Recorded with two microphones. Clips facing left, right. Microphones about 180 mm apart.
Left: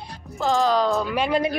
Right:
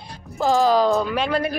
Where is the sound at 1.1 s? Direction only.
15° left (ahead or behind).